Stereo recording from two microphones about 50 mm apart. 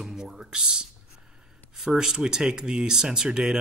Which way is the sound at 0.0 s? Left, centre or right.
Centre.